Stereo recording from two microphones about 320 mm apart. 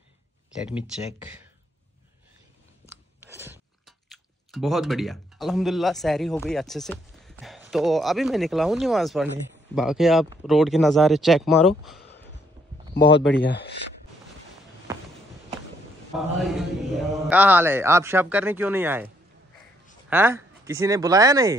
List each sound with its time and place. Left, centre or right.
3.3 s speech: centre
12.9 s speech: left
16.2 s a man's voice: centre
20.1 s speech: centre